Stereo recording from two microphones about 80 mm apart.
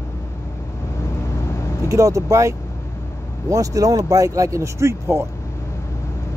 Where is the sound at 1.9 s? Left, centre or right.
Right.